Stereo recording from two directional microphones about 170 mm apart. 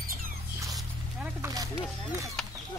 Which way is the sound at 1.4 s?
20° right (ahead or behind).